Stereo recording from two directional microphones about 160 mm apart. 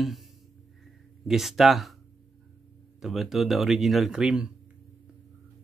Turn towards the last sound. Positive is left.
turn(degrees=-5)  # may be behind; listen again after turning